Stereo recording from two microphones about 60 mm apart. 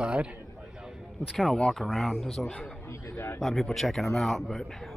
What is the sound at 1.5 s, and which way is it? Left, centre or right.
Speech, centre.